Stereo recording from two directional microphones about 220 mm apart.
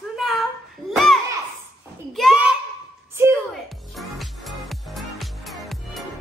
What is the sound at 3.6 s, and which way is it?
Music, centre (ahead or behind).